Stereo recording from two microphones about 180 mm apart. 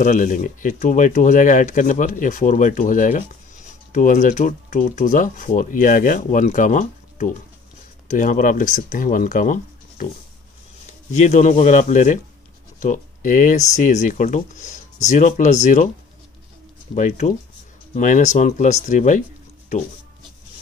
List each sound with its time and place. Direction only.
0.0 s speech: 45° left (ahead or behind)
16.9 s speech: 40° left (ahead or behind)